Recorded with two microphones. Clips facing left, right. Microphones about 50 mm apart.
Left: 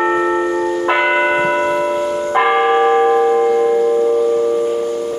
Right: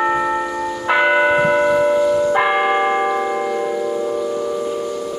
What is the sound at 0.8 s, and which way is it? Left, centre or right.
Church bell, left.